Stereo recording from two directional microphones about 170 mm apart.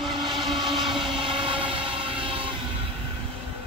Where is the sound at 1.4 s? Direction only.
30° right (ahead or behind).